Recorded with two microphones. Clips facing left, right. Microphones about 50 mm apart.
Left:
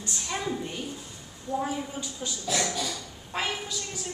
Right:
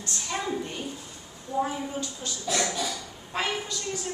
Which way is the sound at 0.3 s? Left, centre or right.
Centre.